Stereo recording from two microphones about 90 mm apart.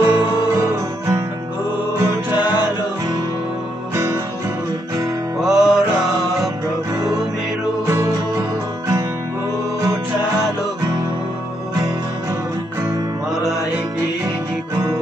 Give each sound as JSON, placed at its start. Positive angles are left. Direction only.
{"t": 0.0, "sound": "music", "side_deg": -25}
{"t": 0.6, "sound": "music", "side_deg": -35}
{"t": 3.9, "sound": "music", "side_deg": -30}
{"t": 5.4, "sound": "music", "side_deg": -5}
{"t": 7.8, "sound": "music", "side_deg": -35}